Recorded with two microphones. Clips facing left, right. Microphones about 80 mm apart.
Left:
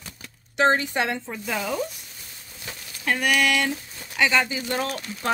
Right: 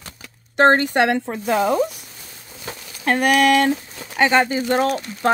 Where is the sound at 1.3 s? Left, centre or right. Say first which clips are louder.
Right 9 dB; right.